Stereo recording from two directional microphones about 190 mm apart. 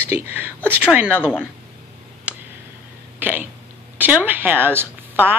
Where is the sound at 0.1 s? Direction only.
10° right (ahead or behind).